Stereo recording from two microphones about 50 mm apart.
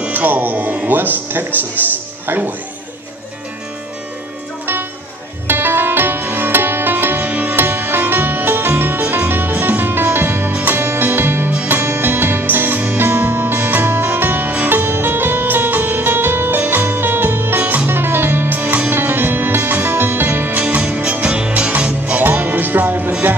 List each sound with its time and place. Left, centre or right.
0.0 s speech: right
5.5 s music: right
10.8 s music: right
20.5 s music: right
22.2 s music: right